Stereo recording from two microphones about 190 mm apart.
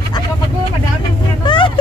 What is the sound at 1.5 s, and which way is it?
Vehicle, 25° left (ahead or behind).